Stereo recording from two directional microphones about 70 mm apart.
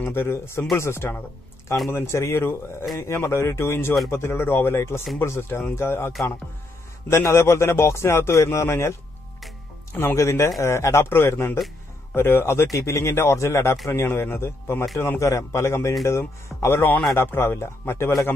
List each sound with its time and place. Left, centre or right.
0.0 s a man's voice: left
9.9 s a man's voice: left
12.6 s a man's voice: left